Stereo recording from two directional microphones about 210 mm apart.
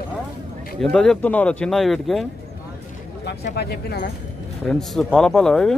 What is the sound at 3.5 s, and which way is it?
Speech, 50° left (ahead or behind).